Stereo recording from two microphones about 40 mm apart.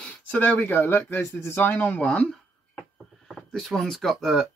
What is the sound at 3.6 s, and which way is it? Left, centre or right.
Speech, centre.